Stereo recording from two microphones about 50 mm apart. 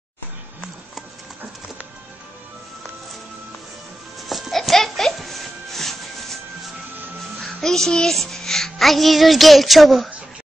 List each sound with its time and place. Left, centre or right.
4.3 s music: centre